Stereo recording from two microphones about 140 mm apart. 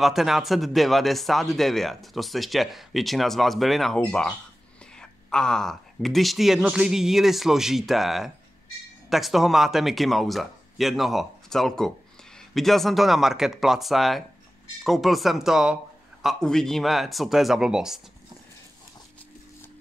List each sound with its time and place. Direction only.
0.0 s speech: centre (ahead or behind)